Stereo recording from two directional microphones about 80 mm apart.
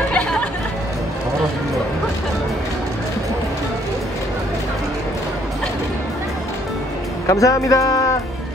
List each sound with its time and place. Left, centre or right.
0.1 s chatter: centre
7.2 s a man's voice: left